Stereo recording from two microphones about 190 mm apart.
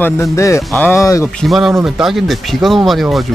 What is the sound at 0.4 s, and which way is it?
Speech, 15° left (ahead or behind).